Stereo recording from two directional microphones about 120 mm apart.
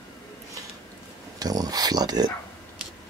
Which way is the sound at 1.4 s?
30° right (ahead or behind).